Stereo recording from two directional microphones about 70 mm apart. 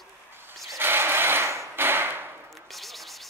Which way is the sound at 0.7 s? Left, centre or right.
Right.